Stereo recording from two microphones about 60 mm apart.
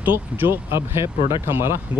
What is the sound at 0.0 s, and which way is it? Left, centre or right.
Speech, right.